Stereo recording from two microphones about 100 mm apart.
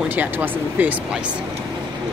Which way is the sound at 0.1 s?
20° right (ahead or behind).